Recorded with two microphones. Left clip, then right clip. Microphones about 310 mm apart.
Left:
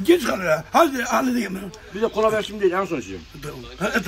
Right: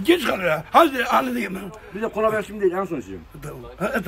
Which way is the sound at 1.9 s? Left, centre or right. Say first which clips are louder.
Left 2 dB; centre.